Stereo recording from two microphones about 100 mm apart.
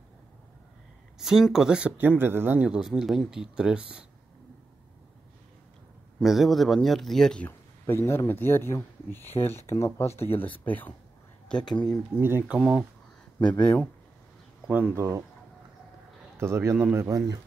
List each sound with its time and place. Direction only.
1.2 s speech: 5° right (ahead or behind)
6.2 s speech: centre (ahead or behind)
7.4 s speech: 25° left (ahead or behind)
11.6 s speech: 45° left (ahead or behind)
12.2 s speech: 20° right (ahead or behind)
12.4 s speech: 5° right (ahead or behind)
13.4 s speech: 10° left (ahead or behind)
14.7 s speech: 15° right (ahead or behind)
16.3 s a man's voice: 25° right (ahead or behind)
17.1 s speech: 35° right (ahead or behind)